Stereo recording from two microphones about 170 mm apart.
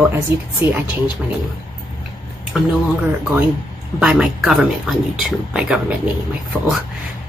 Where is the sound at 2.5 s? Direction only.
5° right (ahead or behind).